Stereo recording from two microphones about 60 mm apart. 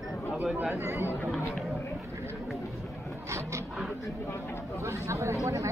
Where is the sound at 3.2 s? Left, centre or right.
Right.